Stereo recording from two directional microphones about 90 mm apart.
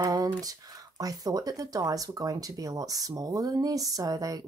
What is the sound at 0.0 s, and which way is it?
Speech, 45° right (ahead or behind).